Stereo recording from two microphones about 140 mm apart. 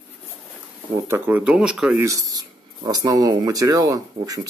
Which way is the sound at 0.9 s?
15° right (ahead or behind).